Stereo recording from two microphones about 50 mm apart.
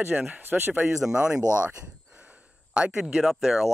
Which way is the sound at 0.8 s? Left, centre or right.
Centre.